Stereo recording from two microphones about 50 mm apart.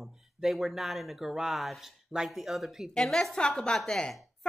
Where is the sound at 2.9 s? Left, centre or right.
Centre.